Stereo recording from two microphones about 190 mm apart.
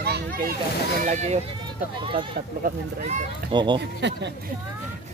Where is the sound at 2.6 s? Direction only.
35° right (ahead or behind).